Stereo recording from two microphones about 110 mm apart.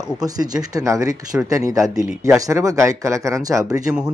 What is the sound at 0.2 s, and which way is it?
Speech, 35° right (ahead or behind).